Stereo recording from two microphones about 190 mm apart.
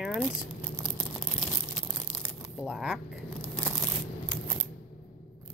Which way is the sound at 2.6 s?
5° right (ahead or behind).